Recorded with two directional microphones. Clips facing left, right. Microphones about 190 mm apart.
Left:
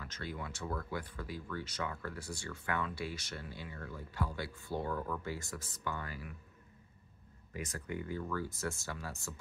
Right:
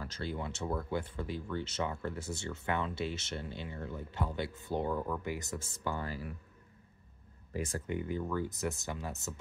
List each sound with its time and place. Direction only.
0.0 s speech: 30° right (ahead or behind)
7.5 s speech: 30° right (ahead or behind)